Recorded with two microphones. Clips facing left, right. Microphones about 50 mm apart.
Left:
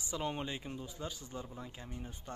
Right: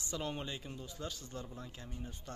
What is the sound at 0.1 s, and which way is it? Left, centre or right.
Speech, centre.